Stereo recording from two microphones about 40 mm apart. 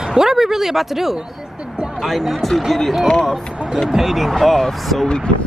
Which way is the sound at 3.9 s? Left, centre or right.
Centre.